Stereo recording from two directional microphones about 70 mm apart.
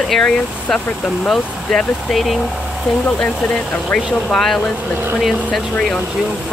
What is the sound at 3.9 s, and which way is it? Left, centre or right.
Speech, centre.